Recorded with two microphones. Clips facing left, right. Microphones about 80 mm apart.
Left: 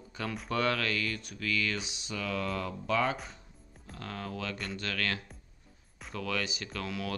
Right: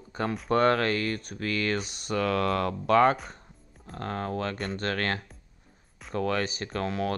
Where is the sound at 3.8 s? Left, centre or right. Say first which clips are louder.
Right 8 dB; right.